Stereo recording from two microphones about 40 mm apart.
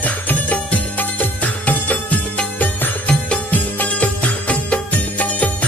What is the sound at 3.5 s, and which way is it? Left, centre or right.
Music, left.